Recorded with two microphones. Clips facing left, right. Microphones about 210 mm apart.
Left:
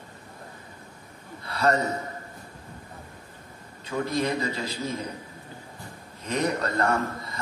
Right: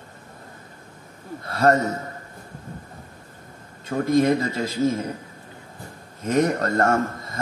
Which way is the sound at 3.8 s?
45° right (ahead or behind).